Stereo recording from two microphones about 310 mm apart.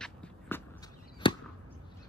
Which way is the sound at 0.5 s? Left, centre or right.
Centre.